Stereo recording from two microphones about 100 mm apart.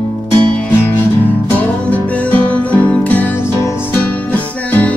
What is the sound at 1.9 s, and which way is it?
Music, 15° left (ahead or behind).